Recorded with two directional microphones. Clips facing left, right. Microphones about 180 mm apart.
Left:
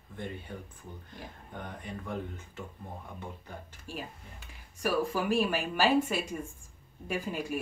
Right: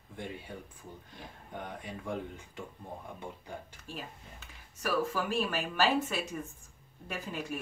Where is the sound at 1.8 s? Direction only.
15° right (ahead or behind).